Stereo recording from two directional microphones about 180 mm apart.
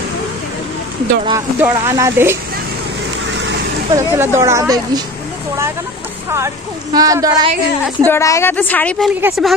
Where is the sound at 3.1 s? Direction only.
90° right.